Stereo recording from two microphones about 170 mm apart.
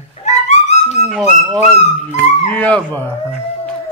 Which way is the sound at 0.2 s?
40° left (ahead or behind).